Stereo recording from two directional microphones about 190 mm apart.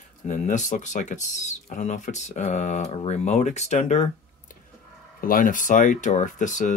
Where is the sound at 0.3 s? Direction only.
40° left (ahead or behind).